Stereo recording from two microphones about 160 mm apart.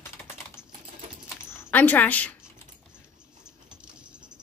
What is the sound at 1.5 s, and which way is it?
Speech, 10° left (ahead or behind).